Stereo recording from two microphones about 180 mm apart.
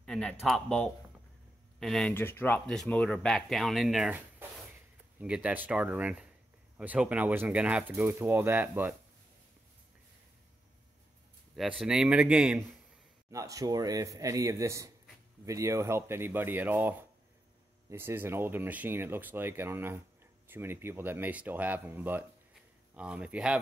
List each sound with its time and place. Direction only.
0.0 s speech: 5° left (ahead or behind)
11.5 s speech: centre (ahead or behind)
13.3 s speech: 20° right (ahead or behind)